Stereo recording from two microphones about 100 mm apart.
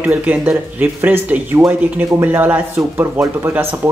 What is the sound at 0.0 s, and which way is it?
Speech, 15° right (ahead or behind).